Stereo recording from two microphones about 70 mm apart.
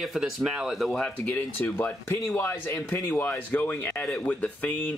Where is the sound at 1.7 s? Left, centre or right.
Left.